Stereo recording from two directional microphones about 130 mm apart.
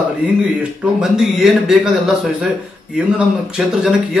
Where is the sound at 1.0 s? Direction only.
5° right (ahead or behind).